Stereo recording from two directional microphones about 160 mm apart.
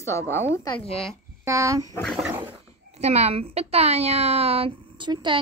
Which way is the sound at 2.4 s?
40° right (ahead or behind).